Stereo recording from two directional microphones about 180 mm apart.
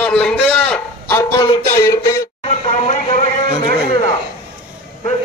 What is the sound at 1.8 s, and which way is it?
Speech, 15° left (ahead or behind).